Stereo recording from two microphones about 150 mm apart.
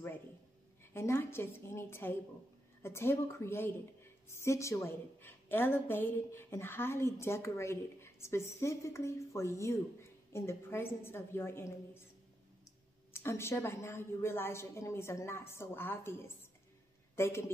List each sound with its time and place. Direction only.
0.9 s a woman's voice: 15° left (ahead or behind)
13.1 s a woman's voice: 15° left (ahead or behind)